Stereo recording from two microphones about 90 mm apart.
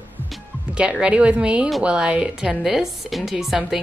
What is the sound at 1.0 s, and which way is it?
Speech, 10° right (ahead or behind).